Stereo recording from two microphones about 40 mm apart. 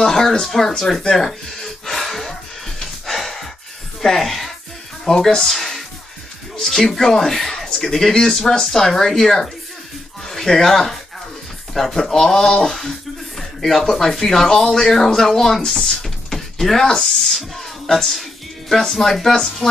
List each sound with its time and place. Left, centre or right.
0.0 s music: centre
4.0 s speech: centre
18.7 s speech: centre